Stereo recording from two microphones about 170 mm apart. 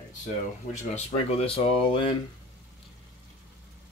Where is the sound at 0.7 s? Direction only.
40° left (ahead or behind).